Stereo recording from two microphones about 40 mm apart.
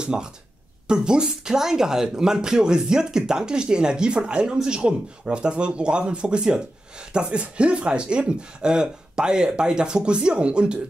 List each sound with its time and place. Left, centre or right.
0.0 s speech: centre